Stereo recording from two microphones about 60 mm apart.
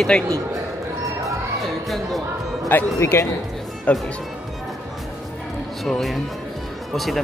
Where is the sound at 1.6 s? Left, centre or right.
Centre.